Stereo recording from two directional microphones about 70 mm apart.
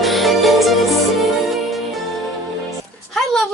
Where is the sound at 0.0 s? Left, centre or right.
Centre.